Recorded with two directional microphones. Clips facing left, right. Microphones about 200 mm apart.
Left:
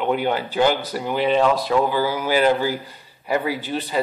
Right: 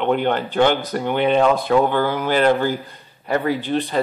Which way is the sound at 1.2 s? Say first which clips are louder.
Right 1 dB; 50° right (ahead or behind).